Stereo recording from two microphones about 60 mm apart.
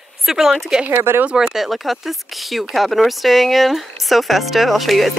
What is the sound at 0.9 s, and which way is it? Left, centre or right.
Speech, right.